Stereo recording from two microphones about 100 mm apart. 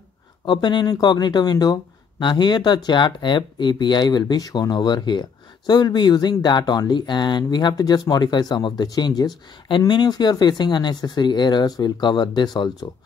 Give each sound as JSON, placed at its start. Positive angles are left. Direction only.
{"t": 0.5, "sound": "speech", "side_deg": 50}